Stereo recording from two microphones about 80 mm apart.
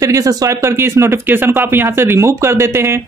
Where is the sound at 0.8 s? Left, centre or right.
Right.